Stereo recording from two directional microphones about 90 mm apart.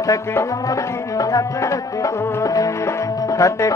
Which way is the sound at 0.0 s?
35° left (ahead or behind).